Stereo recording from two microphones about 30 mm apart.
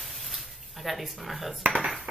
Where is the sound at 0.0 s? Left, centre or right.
Centre.